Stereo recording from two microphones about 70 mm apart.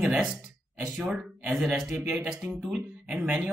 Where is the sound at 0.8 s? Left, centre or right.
Centre.